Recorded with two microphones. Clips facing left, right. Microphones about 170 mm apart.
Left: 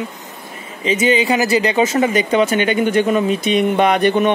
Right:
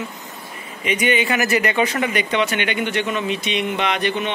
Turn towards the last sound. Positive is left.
turn(degrees=45)  # may be behind; listen again after turning